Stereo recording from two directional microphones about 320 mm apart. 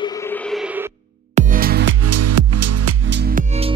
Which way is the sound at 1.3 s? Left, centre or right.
Right.